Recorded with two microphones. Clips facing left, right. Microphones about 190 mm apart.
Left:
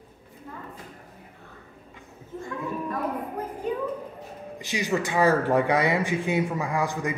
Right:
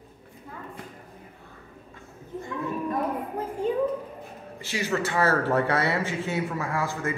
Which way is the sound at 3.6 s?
30° right (ahead or behind).